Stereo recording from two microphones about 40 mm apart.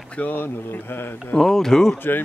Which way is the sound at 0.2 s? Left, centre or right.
Left.